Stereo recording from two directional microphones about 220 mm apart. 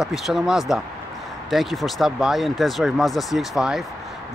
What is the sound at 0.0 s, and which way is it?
Speech, centre (ahead or behind).